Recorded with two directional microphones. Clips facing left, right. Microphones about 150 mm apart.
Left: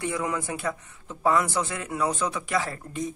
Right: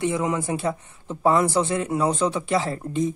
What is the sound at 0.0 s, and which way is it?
Speech, 20° right (ahead or behind).